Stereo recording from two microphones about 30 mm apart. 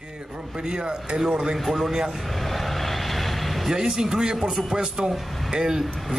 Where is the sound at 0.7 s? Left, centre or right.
Right.